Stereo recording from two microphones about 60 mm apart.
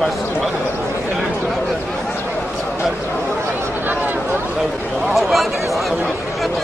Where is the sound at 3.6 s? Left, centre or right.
Right.